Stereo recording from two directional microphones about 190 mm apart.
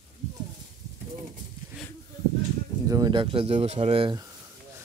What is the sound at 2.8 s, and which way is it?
Speech, 20° right (ahead or behind).